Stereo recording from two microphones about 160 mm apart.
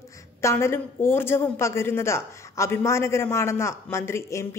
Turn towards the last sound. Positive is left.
turn(degrees=20)  # may be behind; listen again after turning